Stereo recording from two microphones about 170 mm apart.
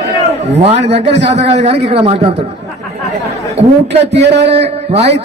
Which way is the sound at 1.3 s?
40° right (ahead or behind).